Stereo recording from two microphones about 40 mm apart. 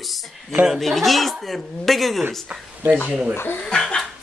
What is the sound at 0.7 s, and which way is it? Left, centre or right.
Speech, centre.